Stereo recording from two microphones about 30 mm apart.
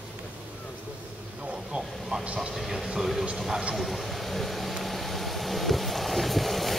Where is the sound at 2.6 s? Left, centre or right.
Centre.